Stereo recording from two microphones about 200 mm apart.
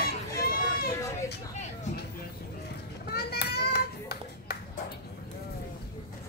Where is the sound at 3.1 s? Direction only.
55° left (ahead or behind).